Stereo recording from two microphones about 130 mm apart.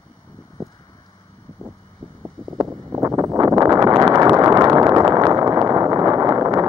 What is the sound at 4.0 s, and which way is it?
Vehicle, 35° right (ahead or behind).